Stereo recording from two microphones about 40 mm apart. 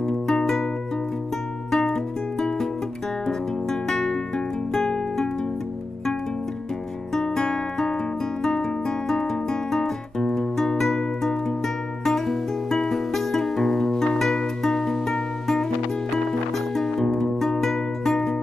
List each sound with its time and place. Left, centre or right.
0.0 s music: centre
1.7 s music: centre
3.8 s music: centre
7.2 s guitar: centre
10.8 s music: centre